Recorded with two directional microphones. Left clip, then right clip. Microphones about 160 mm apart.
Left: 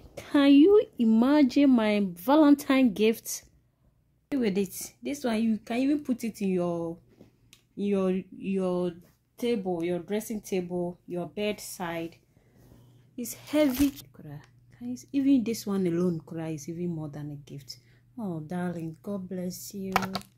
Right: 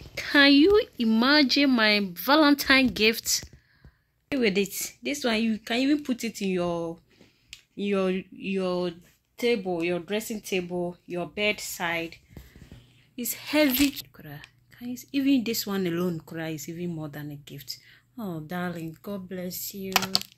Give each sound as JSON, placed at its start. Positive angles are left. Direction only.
{"t": 0.1, "sound": "a sound", "side_deg": 5}
{"t": 0.7, "sound": "speech", "side_deg": 10}
{"t": 4.3, "sound": "a woman's voice", "side_deg": -15}
{"t": 16.1, "sound": "speech", "side_deg": -25}
{"t": 16.3, "sound": "speech", "side_deg": -5}
{"t": 20.0, "sound": "speech", "side_deg": 20}